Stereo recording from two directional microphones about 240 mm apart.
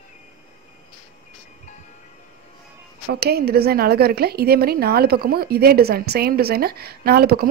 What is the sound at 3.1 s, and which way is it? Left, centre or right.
Speech, right.